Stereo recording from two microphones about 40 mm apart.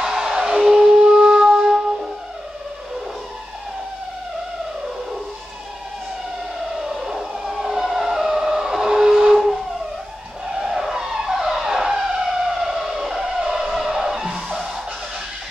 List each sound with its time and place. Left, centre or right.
0.0 s music: centre
6.7 s siren: centre
10.4 s skidding: centre
10.7 s vehicle: centre
11.1 s emergency vehicle: centre
12.1 s siren: centre
13.6 s music: centre